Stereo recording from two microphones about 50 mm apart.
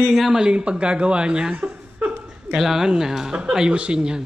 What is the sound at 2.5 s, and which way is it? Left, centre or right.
Speech, centre.